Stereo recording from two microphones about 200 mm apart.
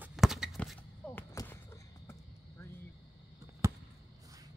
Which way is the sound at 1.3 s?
15° left (ahead or behind).